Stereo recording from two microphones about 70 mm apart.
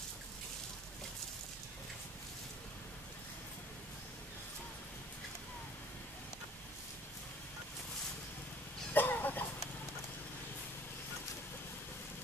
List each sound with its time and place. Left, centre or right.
8.9 s chicken: left